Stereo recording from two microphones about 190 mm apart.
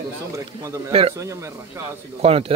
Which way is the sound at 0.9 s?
30° right (ahead or behind).